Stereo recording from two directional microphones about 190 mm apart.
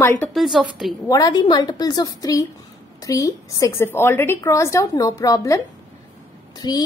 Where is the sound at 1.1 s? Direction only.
20° left (ahead or behind).